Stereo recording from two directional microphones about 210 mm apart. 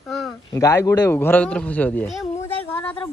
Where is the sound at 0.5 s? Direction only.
15° left (ahead or behind).